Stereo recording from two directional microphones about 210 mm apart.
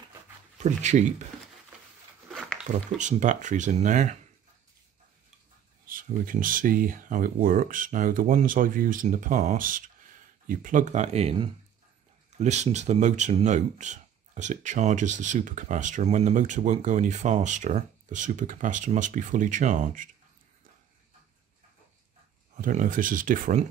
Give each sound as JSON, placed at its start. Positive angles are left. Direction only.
{"t": 0.6, "sound": "speech", "side_deg": -35}
{"t": 2.2, "sound": "a sound", "side_deg": 0}
{"t": 3.0, "sound": "speech", "side_deg": -35}
{"t": 5.9, "sound": "speech", "side_deg": -40}
{"t": 22.6, "sound": "speech", "side_deg": -40}